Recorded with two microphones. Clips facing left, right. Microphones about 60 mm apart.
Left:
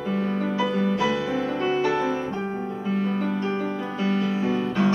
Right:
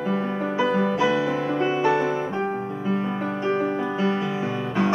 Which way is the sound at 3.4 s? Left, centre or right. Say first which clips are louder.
Right 4 dB; right.